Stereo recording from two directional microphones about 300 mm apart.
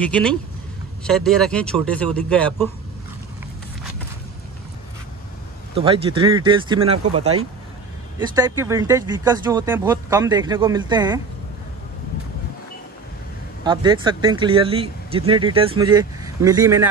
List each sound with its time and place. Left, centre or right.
0.0 s speech: centre
5.8 s speech: centre
13.7 s speech: centre